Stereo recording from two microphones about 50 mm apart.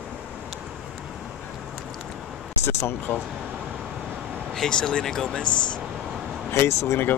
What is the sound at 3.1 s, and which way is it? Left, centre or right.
Speech, left.